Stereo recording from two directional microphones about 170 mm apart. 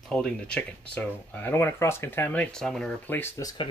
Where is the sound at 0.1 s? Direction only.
5° left (ahead or behind).